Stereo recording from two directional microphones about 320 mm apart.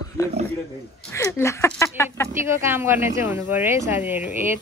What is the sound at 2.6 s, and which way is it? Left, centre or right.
Speech, centre.